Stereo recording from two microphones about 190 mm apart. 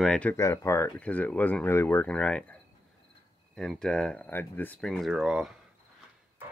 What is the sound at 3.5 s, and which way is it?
Speech, centre (ahead or behind).